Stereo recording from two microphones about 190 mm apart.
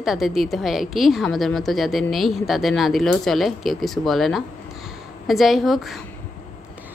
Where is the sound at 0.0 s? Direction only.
Centre (ahead or behind).